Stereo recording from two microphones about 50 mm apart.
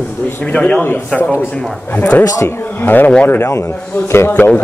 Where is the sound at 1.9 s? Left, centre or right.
Left.